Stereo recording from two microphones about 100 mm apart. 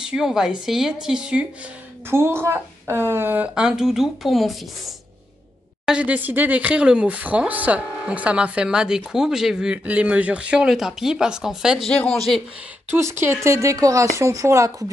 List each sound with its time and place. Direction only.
0.0 s speech: 5° right (ahead or behind)
2.0 s speech: 25° right (ahead or behind); by 4.9 s centre (ahead or behind)
5.9 s speech: 15° right (ahead or behind)
11.9 s speech: 10° left (ahead or behind)
12.9 s speech: 25° right (ahead or behind)